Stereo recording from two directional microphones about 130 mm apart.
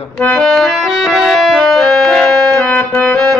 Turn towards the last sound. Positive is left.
turn(degrees=10)  # may be behind; listen again after turning